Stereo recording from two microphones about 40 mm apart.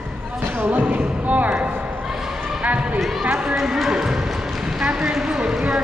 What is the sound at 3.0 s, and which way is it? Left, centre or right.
Run, centre.